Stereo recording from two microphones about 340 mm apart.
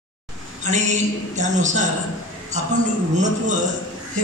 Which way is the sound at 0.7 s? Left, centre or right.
Right.